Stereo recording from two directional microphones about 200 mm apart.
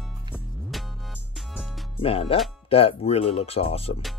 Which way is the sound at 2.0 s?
30° left (ahead or behind).